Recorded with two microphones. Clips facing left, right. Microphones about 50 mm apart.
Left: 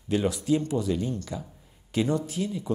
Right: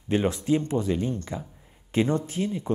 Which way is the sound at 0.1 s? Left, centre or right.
Right.